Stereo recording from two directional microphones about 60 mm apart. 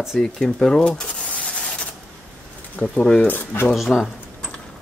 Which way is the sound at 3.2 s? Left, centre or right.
Left.